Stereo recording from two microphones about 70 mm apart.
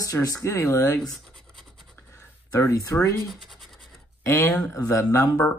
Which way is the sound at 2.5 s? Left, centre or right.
Left.